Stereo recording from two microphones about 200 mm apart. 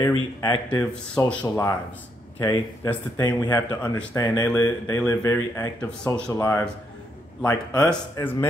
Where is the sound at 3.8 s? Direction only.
5° left (ahead or behind).